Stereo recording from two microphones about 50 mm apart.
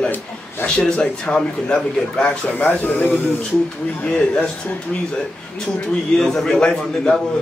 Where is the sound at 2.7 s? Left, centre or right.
Left.